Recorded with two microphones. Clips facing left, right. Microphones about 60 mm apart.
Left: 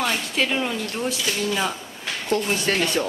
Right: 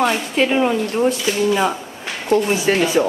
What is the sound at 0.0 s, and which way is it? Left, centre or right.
Speech, centre.